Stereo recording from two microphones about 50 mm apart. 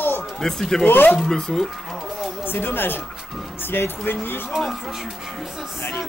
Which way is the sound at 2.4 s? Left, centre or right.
Left.